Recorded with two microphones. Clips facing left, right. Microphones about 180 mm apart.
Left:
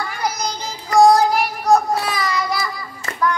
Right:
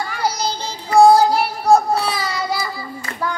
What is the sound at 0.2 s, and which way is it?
Child singing, 30° right (ahead or behind).